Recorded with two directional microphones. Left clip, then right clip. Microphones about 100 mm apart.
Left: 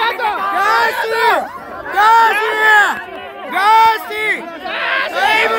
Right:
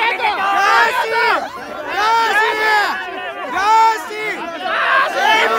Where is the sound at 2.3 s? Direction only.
20° left (ahead or behind).